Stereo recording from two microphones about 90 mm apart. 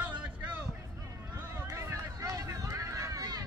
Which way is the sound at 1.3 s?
25° right (ahead or behind).